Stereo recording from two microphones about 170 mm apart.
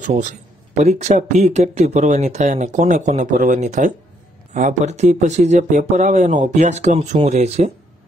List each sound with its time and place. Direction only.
0.0 s speech: 45° right (ahead or behind)